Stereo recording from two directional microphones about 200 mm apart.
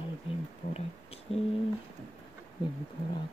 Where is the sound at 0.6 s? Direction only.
35° left (ahead or behind).